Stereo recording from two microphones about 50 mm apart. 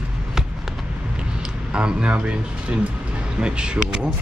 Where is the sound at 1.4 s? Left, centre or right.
Centre.